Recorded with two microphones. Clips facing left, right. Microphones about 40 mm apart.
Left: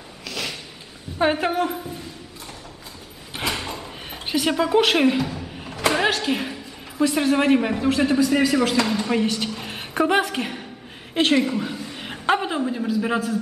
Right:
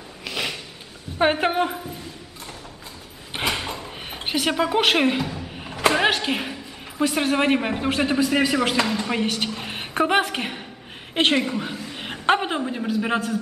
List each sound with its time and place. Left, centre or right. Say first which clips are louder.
0.2 s a sound: right 2 dB; centre
1.2 s a woman's voice: right 1 dB; right
3.4 s door: right 1 dB; centre
4.1 s a woman's voice: left 1 dB; centre
8.8 s a woman's voice: left 1 dB; centre
9.1 s a woman's voice: left 2 dB; centre
11.4 s a woman's voice: left 2 dB; centre